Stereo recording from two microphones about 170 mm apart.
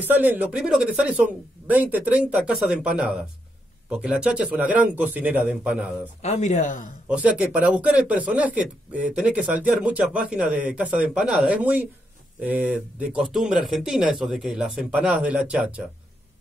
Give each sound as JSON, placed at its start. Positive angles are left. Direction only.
{"t": 0.0, "sound": "speech", "side_deg": -10}
{"t": 6.2, "sound": "speech", "side_deg": 40}
{"t": 7.1, "sound": "speech", "side_deg": -5}